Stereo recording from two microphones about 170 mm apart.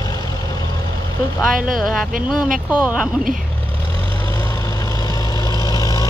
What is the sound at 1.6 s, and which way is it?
Speech, centre (ahead or behind).